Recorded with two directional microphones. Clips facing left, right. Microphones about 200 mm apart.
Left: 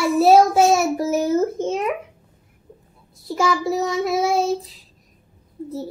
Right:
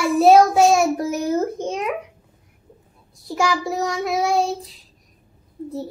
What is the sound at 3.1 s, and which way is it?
A child's voice, centre (ahead or behind).